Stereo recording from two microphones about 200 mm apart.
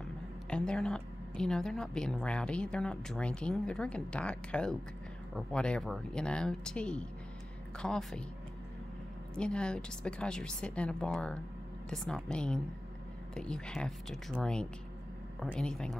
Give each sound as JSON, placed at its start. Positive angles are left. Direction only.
{"t": 0.5, "sound": "a woman's voice", "side_deg": 5}
{"t": 9.3, "sound": "a woman's voice", "side_deg": 5}